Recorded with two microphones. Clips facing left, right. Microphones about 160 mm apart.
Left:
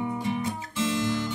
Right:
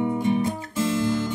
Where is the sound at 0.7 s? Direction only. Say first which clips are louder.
Right 3 dB; 45° right (ahead or behind).